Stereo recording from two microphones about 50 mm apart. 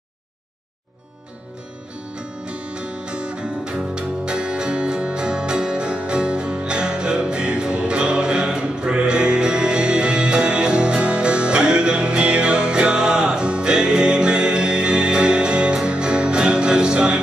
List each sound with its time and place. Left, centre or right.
2.1 s music: right